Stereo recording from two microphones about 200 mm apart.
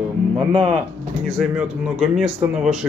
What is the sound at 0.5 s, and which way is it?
Speech, 30° right (ahead or behind).